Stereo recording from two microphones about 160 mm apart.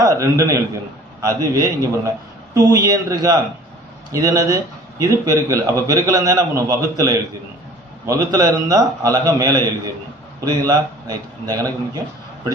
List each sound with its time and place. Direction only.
0.0 s a man's voice: 20° right (ahead or behind)